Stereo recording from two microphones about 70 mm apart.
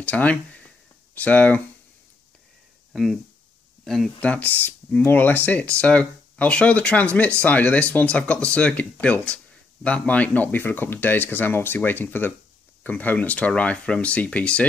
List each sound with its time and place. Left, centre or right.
0.0 s speech: centre
2.9 s speech: centre
4.2 s speech: centre